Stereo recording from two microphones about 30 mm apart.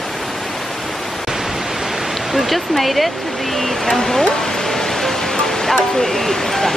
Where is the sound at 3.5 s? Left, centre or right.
Centre.